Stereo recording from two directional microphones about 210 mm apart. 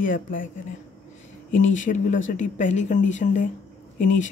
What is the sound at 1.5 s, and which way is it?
Speech, 35° left (ahead or behind).